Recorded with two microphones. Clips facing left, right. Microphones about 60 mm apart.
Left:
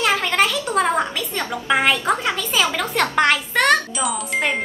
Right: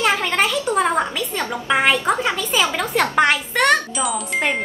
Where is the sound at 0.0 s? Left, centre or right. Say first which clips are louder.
Even; centre.